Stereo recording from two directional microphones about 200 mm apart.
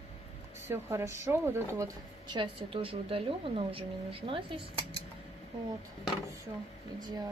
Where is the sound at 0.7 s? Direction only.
15° right (ahead or behind).